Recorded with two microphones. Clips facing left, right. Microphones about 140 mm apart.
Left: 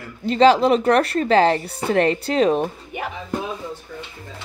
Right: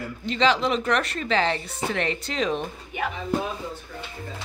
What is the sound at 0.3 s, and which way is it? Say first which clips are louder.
Speech: left 8 dB; 40° left (ahead or behind).